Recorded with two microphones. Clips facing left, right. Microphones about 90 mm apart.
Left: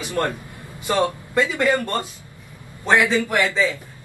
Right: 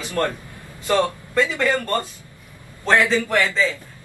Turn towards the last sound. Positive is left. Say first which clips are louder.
# even
turn(degrees=15)  # may be behind; listen again after turning